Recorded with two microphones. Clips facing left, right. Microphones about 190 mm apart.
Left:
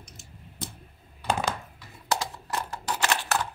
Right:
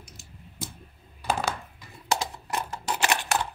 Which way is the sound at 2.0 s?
20° right (ahead or behind).